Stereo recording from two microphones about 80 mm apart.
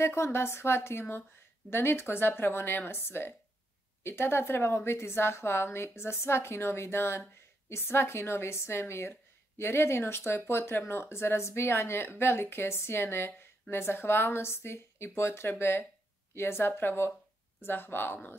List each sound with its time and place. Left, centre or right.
0.0 s speech: left